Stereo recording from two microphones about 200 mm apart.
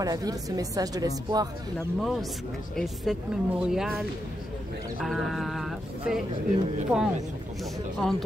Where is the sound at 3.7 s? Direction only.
Centre (ahead or behind).